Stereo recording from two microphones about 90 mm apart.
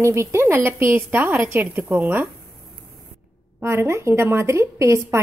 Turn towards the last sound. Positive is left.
turn(degrees=-35)  # may be behind; listen again after turning